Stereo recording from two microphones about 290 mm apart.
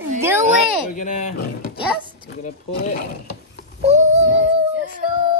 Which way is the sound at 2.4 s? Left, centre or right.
Left.